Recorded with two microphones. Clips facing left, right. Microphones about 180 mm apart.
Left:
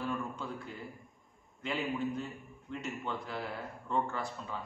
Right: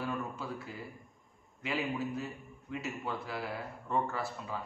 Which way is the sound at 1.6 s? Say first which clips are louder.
Even; 5° right (ahead or behind).